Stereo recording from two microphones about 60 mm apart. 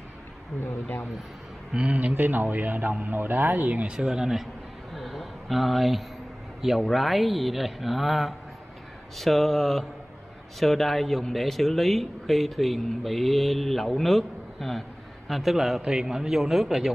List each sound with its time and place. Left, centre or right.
0.7 s speech: left
1.7 s speech: centre
2.0 s a man's voice: right; by 4.5 s centre
4.9 s a sound: centre
6.8 s speech: centre